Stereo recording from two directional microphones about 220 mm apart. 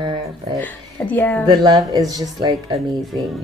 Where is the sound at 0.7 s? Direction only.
10° left (ahead or behind).